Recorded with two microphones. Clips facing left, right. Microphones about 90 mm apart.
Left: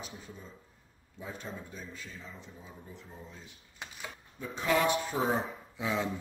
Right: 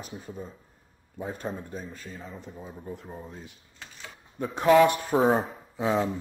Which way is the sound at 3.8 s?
20° left (ahead or behind).